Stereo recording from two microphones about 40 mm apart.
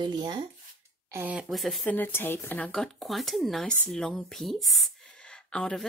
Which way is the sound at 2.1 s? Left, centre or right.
Left.